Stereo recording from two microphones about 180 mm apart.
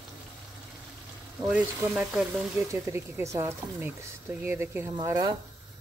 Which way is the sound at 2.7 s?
15° right (ahead or behind).